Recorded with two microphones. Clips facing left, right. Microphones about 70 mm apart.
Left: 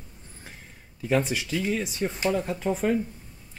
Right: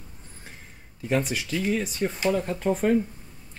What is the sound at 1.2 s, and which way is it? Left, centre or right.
Speech, left.